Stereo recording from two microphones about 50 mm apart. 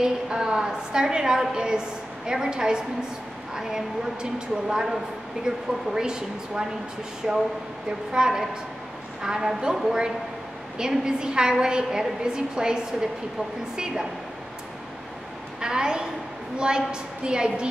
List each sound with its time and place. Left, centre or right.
0.0 s a woman's voice: centre
15.6 s a woman's voice: centre